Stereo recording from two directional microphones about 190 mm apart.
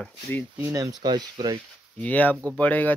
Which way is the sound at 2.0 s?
10° left (ahead or behind).